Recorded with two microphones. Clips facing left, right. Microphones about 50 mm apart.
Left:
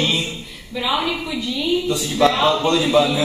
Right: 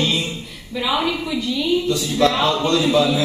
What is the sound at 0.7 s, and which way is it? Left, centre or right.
Mantra, centre.